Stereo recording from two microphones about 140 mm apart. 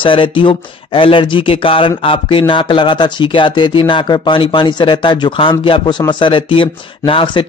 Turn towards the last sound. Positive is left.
turn(degrees=35)  # may be behind; listen again after turning